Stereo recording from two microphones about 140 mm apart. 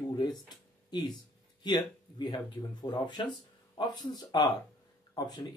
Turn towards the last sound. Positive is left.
turn(degrees=30)  # may be behind; listen again after turning